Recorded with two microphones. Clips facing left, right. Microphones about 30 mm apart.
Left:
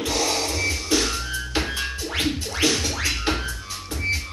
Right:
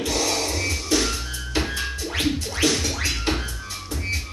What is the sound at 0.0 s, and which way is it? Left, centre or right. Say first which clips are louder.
Music: even; left.